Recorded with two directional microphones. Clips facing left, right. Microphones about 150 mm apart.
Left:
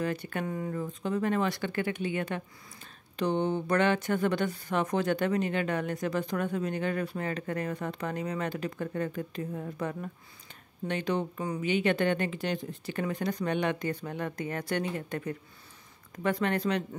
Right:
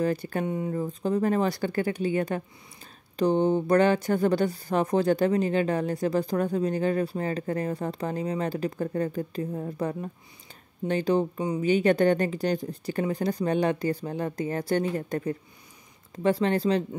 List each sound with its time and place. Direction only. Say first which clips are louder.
0.0 s speech: right 5 dB; 35° right (ahead or behind)
0.5 s speech: right 5 dB; 20° right (ahead or behind)
11.3 s speech: right 5 dB; 20° right (ahead or behind)
11.6 s speech: right 6 dB; 40° right (ahead or behind)